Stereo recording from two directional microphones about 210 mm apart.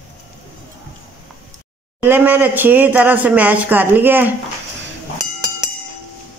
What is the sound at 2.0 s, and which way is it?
Speech, 10° right (ahead or behind).